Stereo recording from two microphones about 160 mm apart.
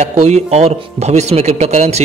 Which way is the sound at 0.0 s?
45° right (ahead or behind).